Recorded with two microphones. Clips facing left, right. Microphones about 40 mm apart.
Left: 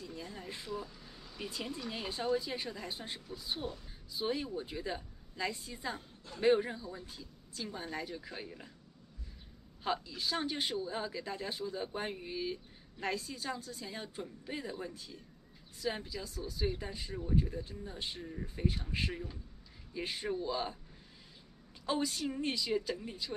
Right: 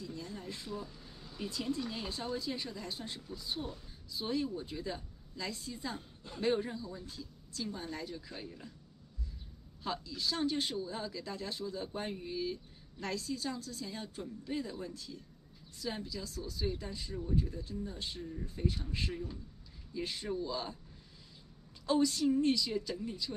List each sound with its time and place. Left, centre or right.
0.0 s speech: left
9.8 s speech: left
21.8 s speech: left